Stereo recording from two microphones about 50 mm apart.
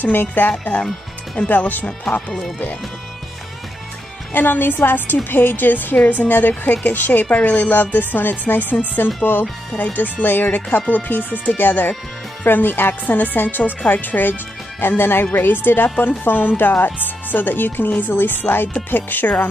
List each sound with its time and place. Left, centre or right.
0.0 s speech: left
4.3 s speech: left